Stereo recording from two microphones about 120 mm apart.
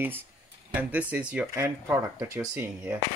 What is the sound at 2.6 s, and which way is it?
Speech, 20° right (ahead or behind).